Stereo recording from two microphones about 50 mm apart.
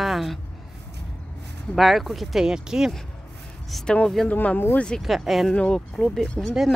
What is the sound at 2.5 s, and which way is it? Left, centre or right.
Speech, centre.